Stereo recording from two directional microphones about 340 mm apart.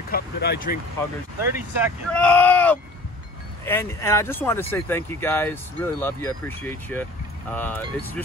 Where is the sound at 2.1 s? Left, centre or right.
Centre.